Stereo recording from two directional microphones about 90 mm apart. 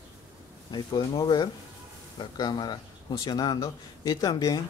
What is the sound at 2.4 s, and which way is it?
A man's voice, 50° left (ahead or behind).